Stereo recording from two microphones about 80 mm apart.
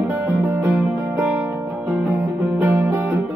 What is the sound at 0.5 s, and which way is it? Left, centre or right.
Music, right.